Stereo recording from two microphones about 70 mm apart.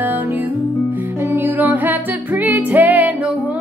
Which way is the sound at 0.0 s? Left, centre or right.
Right.